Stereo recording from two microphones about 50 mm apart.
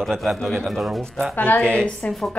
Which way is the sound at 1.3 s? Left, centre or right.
Left.